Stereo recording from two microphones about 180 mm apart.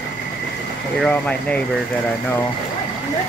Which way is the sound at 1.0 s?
5° left (ahead or behind).